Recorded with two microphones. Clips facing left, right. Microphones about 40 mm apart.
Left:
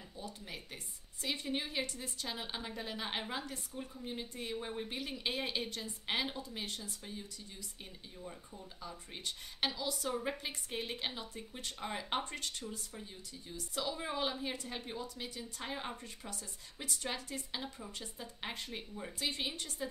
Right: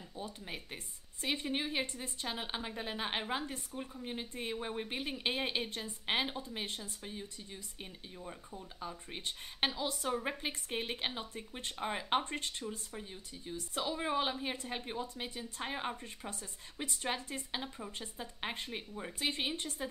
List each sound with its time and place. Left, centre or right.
0.2 s a woman's voice: right
10.0 s a woman's voice: centre
19.2 s a woman's voice: right